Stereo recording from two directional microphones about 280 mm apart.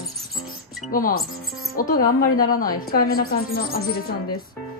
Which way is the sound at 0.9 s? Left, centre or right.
Left.